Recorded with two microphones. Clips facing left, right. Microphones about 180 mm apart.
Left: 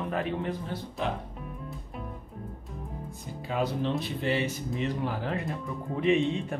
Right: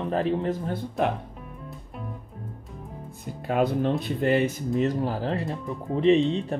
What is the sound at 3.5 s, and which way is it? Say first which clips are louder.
Speech: right 6 dB; 55° right (ahead or behind).